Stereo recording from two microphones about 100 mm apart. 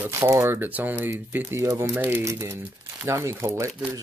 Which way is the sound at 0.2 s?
25° right (ahead or behind).